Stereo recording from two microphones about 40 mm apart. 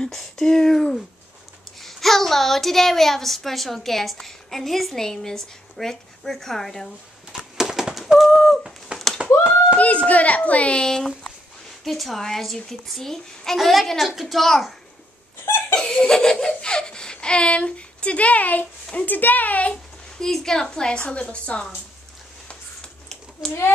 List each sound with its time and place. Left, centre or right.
0.1 s a woman's voice: centre
7.5 s a sound: centre
8.3 s a sound: centre
9.2 s a sound: right
10.0 s a child's voice: left
10.8 s a woman's voice: centre
11.8 s a woman's voice: centre
15.7 s laughter: left
19.0 s a woman's voice: left
20.2 s a woman's voice: centre
21.0 s a woman's voice: left